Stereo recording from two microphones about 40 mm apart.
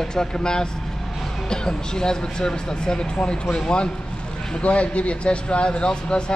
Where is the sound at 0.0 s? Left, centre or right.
Centre.